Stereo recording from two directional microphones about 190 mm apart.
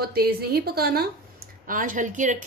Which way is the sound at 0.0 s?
55° right (ahead or behind).